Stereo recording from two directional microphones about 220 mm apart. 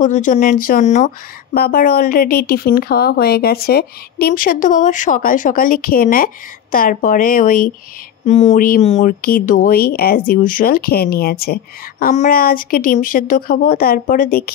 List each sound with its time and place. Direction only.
0.0 s speech: 35° left (ahead or behind)